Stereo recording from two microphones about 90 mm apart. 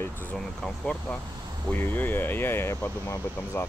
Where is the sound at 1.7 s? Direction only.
20° left (ahead or behind).